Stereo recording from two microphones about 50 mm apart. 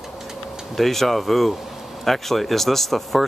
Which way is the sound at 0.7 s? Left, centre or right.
Centre.